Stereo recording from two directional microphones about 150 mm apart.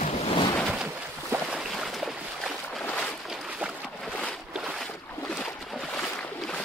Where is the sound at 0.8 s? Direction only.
10° right (ahead or behind); by 3.2 s 10° left (ahead or behind).